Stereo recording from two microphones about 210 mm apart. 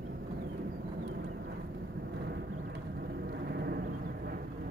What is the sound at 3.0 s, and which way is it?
Vehicle, 50° right (ahead or behind).